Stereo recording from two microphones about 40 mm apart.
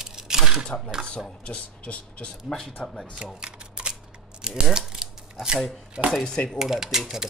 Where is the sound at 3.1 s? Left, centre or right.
Right.